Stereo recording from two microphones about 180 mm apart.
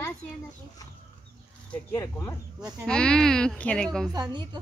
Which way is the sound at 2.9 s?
5° left (ahead or behind).